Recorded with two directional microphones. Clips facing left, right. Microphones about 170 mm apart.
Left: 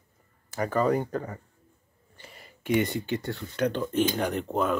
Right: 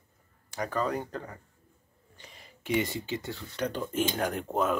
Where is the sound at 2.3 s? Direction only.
60° left (ahead or behind).